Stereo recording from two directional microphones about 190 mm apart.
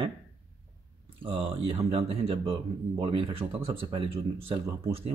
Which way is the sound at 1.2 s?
30° right (ahead or behind).